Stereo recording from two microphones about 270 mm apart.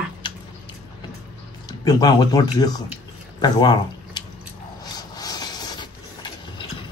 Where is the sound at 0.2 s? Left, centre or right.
Centre.